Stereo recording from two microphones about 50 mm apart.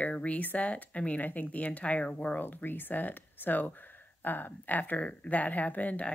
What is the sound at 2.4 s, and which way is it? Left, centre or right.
Speech, left.